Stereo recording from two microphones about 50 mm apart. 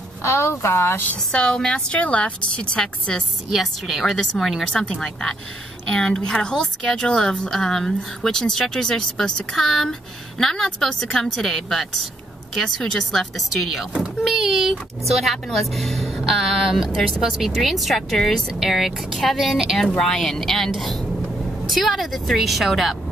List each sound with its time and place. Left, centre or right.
0.2 s speech: left
1.3 s a woman's voice: centre
3.5 s speech: centre
5.9 s speech: centre